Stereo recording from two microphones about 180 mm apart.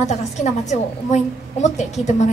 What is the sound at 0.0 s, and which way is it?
A woman's voice, 40° left (ahead or behind).